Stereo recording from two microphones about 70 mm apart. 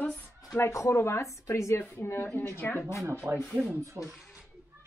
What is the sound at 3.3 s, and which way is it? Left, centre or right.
Speech, right.